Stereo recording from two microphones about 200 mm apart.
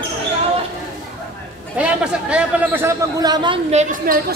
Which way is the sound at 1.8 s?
5° right (ahead or behind).